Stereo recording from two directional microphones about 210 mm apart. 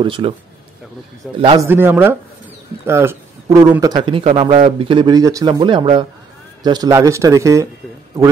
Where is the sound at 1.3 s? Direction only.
25° right (ahead or behind).